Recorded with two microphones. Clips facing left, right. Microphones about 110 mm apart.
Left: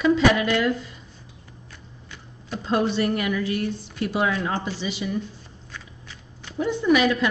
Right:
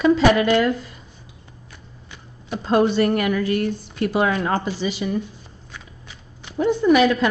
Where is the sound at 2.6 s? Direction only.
45° right (ahead or behind).